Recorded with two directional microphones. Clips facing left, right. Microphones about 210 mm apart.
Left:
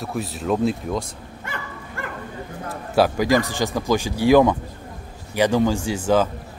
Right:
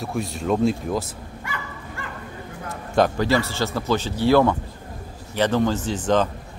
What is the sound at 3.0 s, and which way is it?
Speech, 10° left (ahead or behind).